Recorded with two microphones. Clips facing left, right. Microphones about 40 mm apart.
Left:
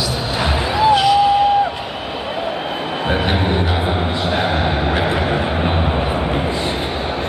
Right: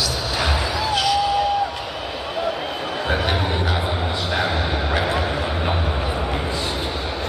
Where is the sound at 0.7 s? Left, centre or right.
Left.